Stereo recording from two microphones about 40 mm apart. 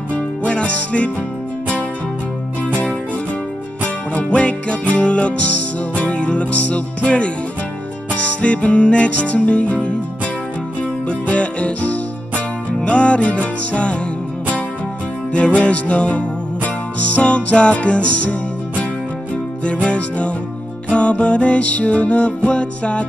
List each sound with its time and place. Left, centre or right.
0.1 s music: left
2.6 s music: left
11.1 s music: left
15.3 s music: left
19.6 s music: left